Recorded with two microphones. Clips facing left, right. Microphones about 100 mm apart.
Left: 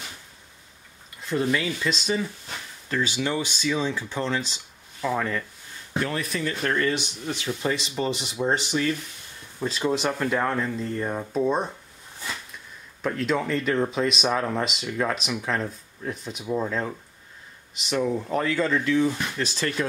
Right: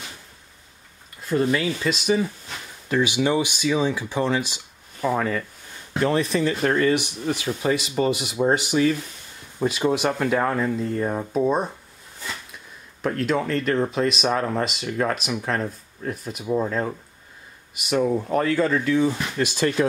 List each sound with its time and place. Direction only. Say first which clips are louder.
1.2 s speech: right 3 dB; 5° right (ahead or behind)
6.0 s speech: right 10 dB; 25° right (ahead or behind)
6.8 s speech: right 5 dB; 10° right (ahead or behind)
13.0 s speech: right 2 dB; centre (ahead or behind)